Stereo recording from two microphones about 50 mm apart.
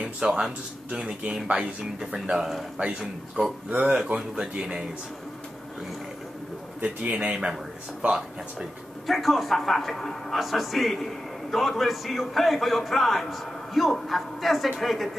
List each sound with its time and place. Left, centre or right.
0.0 s speech: centre
2.0 s a man's voice: centre
3.7 s a man's voice: right
4.1 s a man's voice: centre
6.8 s a man's voice: right
9.0 s a man's voice: centre